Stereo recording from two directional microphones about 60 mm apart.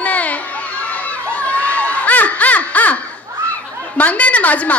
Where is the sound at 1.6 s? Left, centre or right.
Left.